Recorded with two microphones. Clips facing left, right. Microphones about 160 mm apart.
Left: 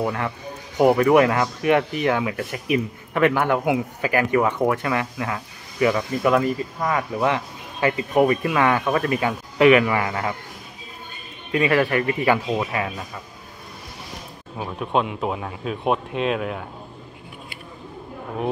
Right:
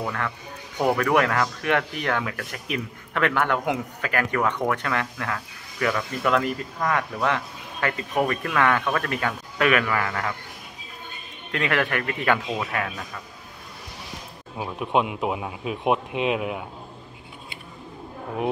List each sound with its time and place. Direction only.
0.0 s speech: 20° left (ahead or behind); by 7.1 s 5° left (ahead or behind)
7.2 s speech: 15° left (ahead or behind)
11.5 s speech: 5° left (ahead or behind)
14.6 s speech: 10° right (ahead or behind)